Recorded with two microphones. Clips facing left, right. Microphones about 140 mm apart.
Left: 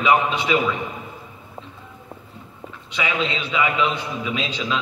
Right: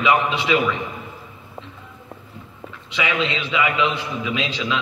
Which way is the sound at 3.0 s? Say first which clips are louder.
Right 1 dB; 40° left (ahead or behind).